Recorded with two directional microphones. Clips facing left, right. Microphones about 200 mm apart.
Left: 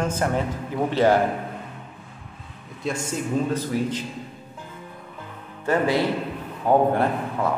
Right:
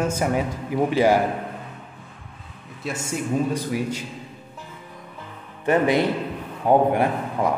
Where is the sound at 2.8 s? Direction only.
10° right (ahead or behind).